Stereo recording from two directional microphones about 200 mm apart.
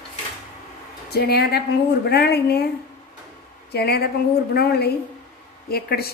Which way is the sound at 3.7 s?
55° left (ahead or behind).